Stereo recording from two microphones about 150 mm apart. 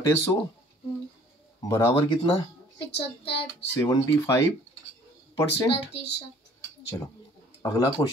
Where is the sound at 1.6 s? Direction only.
20° left (ahead or behind).